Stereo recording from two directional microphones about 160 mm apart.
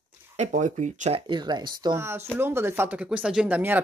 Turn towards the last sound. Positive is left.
turn(degrees=-10)  # may be behind; listen again after turning